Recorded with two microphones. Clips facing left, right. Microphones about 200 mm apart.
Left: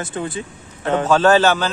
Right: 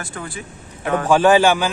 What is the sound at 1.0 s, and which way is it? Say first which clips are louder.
Speech: right 1 dB; 15° right (ahead or behind).